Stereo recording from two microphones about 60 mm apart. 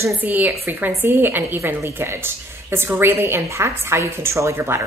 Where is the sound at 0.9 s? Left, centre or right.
Right.